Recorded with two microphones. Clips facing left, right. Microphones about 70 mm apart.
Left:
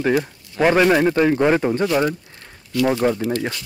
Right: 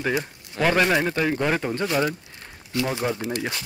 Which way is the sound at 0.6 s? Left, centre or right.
Centre.